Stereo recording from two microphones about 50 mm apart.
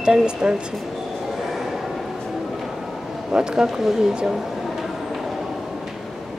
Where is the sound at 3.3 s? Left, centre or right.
Centre.